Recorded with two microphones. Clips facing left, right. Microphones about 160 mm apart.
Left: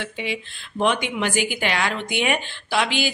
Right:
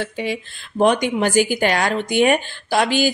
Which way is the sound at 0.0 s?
40° right (ahead or behind).